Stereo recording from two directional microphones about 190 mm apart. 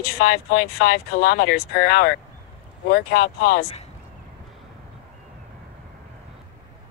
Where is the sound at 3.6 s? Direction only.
35° left (ahead or behind).